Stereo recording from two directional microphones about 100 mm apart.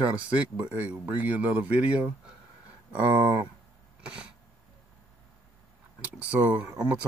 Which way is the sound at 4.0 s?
10° right (ahead or behind).